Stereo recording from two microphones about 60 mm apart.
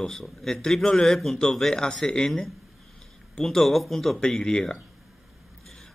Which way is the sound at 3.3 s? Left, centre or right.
Centre.